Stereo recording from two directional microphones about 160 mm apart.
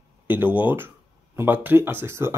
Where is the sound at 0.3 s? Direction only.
10° right (ahead or behind).